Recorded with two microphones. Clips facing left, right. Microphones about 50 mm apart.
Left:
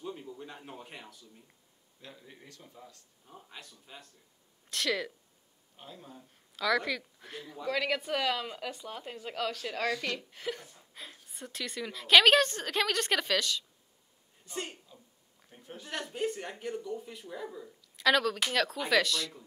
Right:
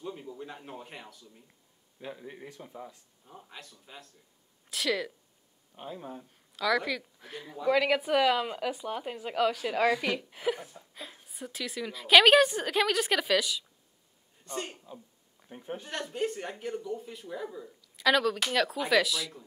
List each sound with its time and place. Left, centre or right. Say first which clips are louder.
0.0 s a sound: right 1 dB; centre
0.3 s speech: right 3 dB; centre
2.0 s a man's voice: right 9 dB; right
3.3 s speech: right 2 dB; centre
5.8 s a man's voice: right 8 dB; right
6.5 s speech: right 1 dB; centre
11.2 s speech: right 2 dB; centre
14.9 s a man's voice: right 9 dB; right
15.9 s speech: right 1 dB; centre